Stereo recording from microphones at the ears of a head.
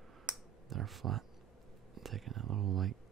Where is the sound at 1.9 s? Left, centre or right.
Right.